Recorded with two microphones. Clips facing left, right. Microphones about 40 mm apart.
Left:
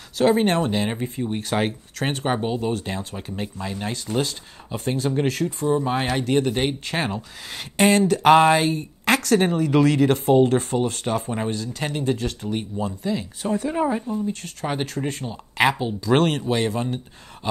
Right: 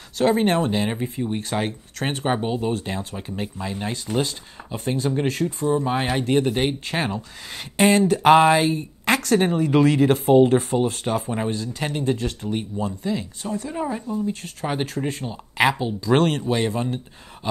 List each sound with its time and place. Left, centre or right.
0.2 s speech: centre
13.7 s speech: centre
14.2 s speech: centre